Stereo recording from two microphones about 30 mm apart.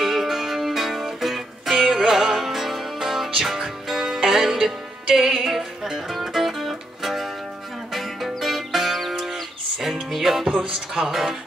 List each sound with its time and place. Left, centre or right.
0.0 s music: centre
1.8 s music: right
2.0 s music: centre
11.1 s speech: centre